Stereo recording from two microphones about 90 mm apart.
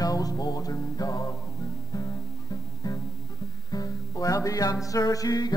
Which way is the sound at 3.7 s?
40° left (ahead or behind).